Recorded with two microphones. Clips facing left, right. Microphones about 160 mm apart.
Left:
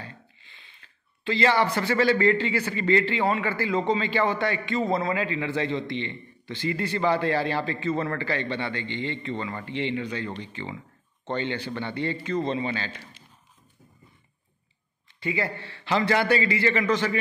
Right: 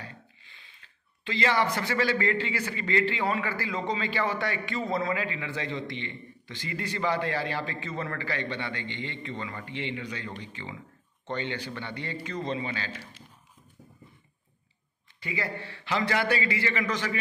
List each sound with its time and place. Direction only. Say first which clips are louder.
0.8 s a man's voice: left 7 dB; 35° left (ahead or behind)
15.1 s a man's voice: left 5 dB; 25° left (ahead or behind)